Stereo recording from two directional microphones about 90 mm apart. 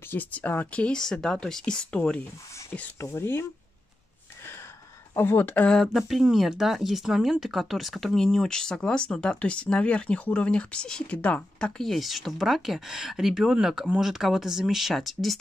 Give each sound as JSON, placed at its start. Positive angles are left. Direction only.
{"t": 0.1, "sound": "speech", "side_deg": 20}
{"t": 3.0, "sound": "speech", "side_deg": 30}
{"t": 5.1, "sound": "speech", "side_deg": 25}
{"t": 5.7, "sound": "speech", "side_deg": 5}
{"t": 11.8, "sound": "speech", "side_deg": 0}